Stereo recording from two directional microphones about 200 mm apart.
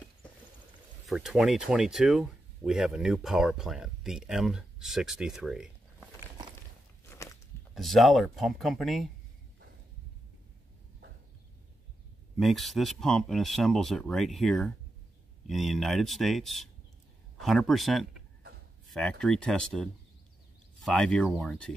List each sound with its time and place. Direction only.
1.0 s speech: centre (ahead or behind)
7.1 s walk: 15° left (ahead or behind)
7.7 s speech: centre (ahead or behind)
12.4 s speech: centre (ahead or behind)